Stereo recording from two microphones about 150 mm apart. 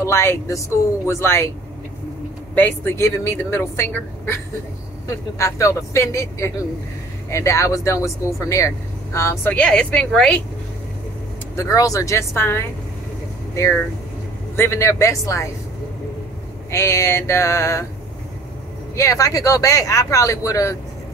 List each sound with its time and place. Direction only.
0.0 s speech: 20° left (ahead or behind)
2.5 s speech: 15° left (ahead or behind)
11.5 s speech: 20° left (ahead or behind)
14.6 s speech: 15° left (ahead or behind)
16.7 s speech: 20° left (ahead or behind)
18.9 s speech: 20° left (ahead or behind)